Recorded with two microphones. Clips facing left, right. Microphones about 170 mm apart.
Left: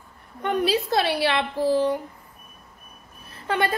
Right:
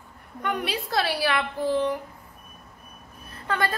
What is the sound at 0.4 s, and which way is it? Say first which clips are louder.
A woman's voice: left 6 dB; 25° left (ahead or behind).